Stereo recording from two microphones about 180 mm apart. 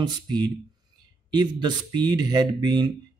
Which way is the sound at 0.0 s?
25° right (ahead or behind).